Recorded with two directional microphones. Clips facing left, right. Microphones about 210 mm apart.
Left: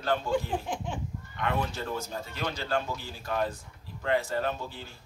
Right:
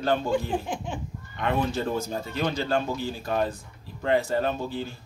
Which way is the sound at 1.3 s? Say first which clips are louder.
Right 5 dB; 25° right (ahead or behind).